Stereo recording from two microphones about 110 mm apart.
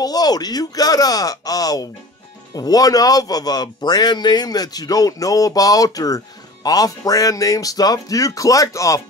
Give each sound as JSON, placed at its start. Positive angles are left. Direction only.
{"t": 0.0, "sound": "a man's voice", "side_deg": 35}